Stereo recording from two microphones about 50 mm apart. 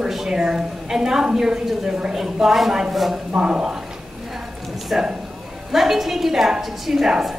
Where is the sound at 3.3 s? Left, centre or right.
Centre.